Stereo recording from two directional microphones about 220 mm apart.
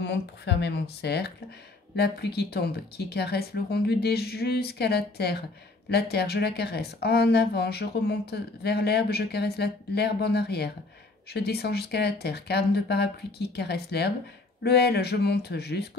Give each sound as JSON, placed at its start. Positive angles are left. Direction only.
{"t": 0.0, "sound": "a woman's voice", "side_deg": 50}